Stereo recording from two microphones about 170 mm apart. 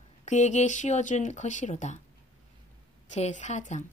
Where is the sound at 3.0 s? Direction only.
40° left (ahead or behind).